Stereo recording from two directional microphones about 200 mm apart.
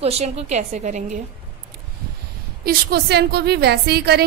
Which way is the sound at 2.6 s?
55° right (ahead or behind).